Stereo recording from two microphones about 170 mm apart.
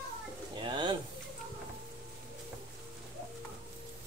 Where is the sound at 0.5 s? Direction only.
30° right (ahead or behind).